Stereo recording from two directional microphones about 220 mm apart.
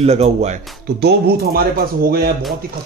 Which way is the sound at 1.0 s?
45° right (ahead or behind).